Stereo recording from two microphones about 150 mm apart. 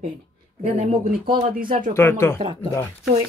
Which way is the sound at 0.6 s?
45° right (ahead or behind).